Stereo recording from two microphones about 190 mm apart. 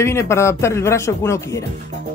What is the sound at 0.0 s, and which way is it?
Speech, 15° left (ahead or behind).